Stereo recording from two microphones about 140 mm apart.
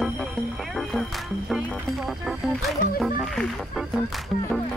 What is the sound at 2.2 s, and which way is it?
Music, centre (ahead or behind).